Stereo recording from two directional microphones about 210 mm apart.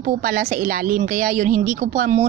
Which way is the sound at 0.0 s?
40° right (ahead or behind).